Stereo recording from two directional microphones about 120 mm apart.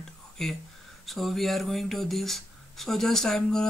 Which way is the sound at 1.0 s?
Centre (ahead or behind).